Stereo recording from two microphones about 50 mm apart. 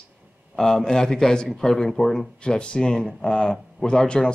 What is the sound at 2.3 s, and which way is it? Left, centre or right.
Speech, centre.